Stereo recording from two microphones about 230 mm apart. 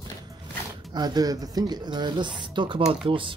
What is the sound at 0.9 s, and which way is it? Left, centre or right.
Speech, centre.